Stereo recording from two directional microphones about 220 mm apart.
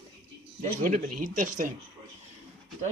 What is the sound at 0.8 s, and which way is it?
Speech, 40° right (ahead or behind).